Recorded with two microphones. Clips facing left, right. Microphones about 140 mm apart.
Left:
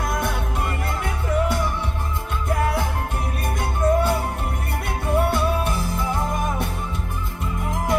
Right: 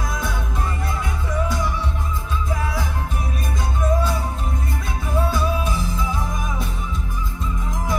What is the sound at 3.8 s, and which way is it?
Music, 60° left (ahead or behind).